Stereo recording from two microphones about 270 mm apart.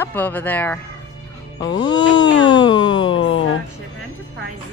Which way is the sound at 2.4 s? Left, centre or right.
Centre.